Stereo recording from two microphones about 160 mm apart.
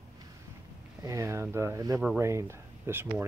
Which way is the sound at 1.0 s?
20° right (ahead or behind).